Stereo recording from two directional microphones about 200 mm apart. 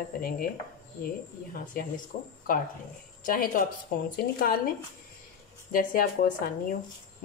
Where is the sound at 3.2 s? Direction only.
45° left (ahead or behind).